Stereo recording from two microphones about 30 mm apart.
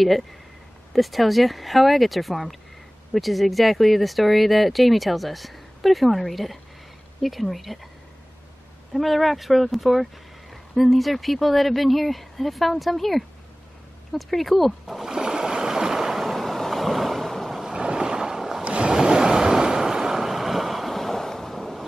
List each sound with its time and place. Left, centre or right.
0.9 s speech: centre
8.9 s speech: centre
15.0 s a sound: right
16.2 s vehicle: centre
17.6 s boat: right
18.6 s ocean: right
18.9 s waves: right; by 21.7 s centre